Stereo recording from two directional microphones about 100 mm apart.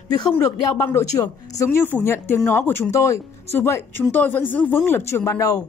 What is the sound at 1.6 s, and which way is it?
Speech, 25° left (ahead or behind).